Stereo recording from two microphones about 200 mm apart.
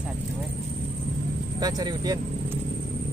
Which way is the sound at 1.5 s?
20° right (ahead or behind).